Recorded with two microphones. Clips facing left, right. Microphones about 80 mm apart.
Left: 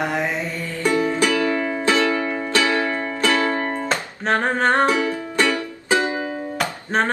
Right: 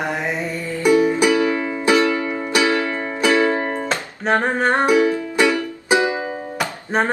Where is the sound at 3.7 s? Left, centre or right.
Centre.